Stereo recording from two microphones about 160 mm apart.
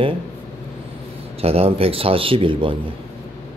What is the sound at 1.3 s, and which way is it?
Speech, 40° right (ahead or behind).